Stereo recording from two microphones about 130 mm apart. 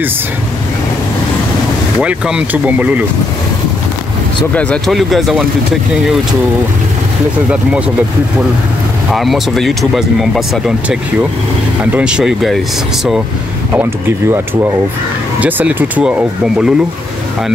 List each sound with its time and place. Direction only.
2.0 s speech: 10° right (ahead or behind)
4.6 s speech: 5° left (ahead or behind)
9.1 s speech: centre (ahead or behind)
14.3 s speech: 20° right (ahead or behind)